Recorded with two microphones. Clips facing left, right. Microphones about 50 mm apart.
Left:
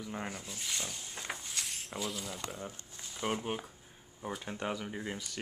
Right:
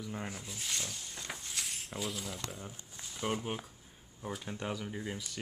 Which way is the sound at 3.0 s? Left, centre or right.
Centre.